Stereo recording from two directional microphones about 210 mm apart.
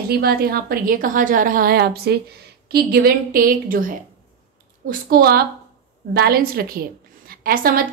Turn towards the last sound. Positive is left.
turn(degrees=-45)  # may be behind; listen again after turning